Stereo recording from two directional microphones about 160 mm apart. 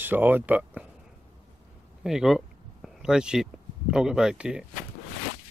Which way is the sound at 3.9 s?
5° right (ahead or behind).